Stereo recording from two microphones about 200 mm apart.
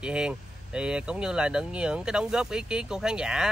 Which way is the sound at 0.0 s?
5° right (ahead or behind).